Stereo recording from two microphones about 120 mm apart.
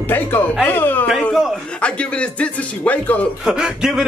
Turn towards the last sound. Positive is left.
turn(degrees=-5)  # may be behind; listen again after turning